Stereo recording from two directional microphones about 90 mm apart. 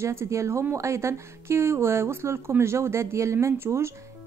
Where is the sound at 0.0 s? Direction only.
30° right (ahead or behind).